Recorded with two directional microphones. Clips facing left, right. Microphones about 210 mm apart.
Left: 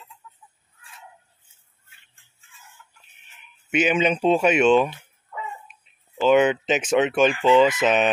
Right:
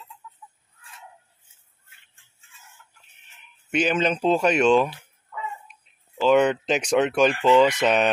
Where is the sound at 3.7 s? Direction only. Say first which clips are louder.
Left 2 dB; 5° left (ahead or behind).